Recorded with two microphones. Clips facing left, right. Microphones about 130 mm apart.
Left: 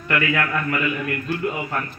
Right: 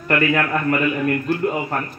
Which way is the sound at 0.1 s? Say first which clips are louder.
Right 4 dB; 45° right (ahead or behind).